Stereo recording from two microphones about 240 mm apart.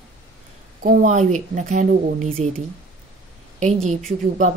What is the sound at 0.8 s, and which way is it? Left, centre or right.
A woman's voice, right.